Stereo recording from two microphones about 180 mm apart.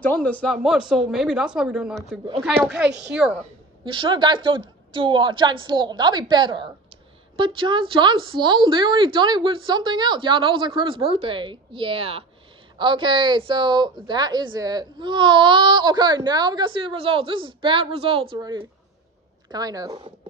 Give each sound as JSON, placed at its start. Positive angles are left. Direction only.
{"t": 0.0, "sound": "speech", "side_deg": 10}
{"t": 0.6, "sound": "speech", "side_deg": -5}
{"t": 3.8, "sound": "speech", "side_deg": -25}